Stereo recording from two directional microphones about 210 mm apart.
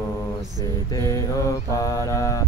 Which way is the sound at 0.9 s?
15° left (ahead or behind).